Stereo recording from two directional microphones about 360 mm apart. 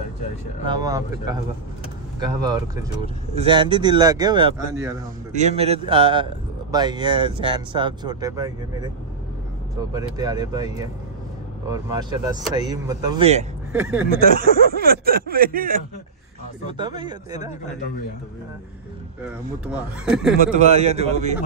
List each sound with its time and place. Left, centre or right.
0.7 s speech: centre
9.9 s speech: centre
13.7 s speech: centre
14.3 s speech: right
16.7 s speech: centre
19.2 s speech: centre
20.3 s speech: centre